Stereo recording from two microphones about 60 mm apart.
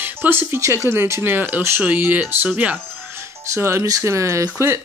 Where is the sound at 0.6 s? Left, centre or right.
Right.